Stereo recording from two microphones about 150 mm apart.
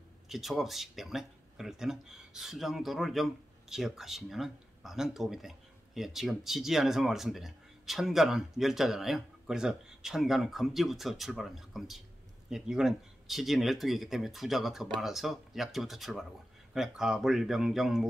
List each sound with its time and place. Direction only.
0.3 s speech: centre (ahead or behind)